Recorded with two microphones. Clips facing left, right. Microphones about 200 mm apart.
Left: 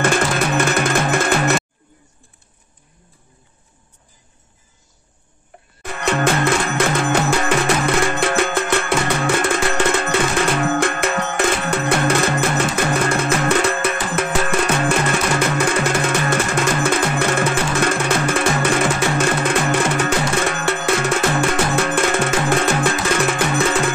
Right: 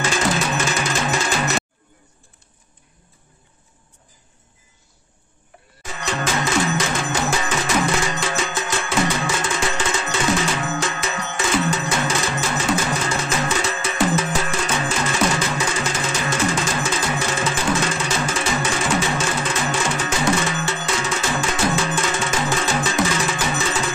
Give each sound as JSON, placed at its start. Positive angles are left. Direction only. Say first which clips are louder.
{"t": 0.0, "sound": "music", "louder": "left 3 dB", "side_deg": 55}
{"t": 5.8, "sound": "music", "louder": "left 6 dB", "side_deg": 60}